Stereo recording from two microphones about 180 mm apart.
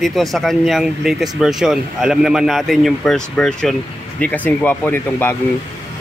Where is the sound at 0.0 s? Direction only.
Centre (ahead or behind).